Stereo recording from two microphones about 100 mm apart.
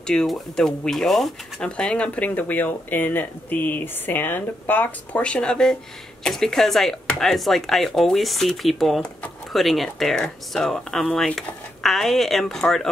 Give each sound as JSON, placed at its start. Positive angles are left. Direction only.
{"t": 0.0, "sound": "speech", "side_deg": 5}